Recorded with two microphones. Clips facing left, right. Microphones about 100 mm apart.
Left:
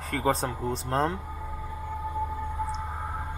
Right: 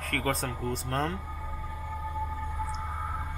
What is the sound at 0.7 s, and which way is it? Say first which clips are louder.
Speech: left 4 dB; 30° left (ahead or behind).